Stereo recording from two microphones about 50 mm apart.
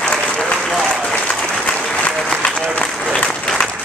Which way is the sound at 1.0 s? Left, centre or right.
Centre.